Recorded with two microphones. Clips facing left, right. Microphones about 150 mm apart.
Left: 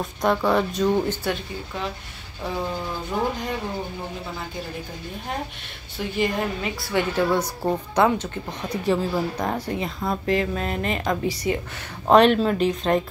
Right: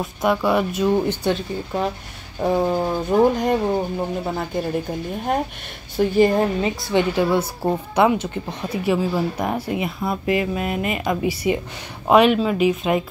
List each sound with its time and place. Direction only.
0.0 s speech: 5° right (ahead or behind)
1.3 s a woman's voice: 40° right (ahead or behind)
2.4 s speech: 55° right (ahead or behind)
5.9 s a woman's voice: 40° right (ahead or behind)
7.2 s speech: 10° right (ahead or behind)